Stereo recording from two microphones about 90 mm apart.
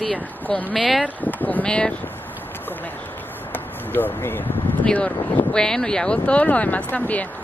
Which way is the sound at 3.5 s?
20° left (ahead or behind).